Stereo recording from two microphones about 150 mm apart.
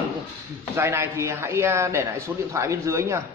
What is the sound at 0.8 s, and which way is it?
A man's voice, 15° right (ahead or behind).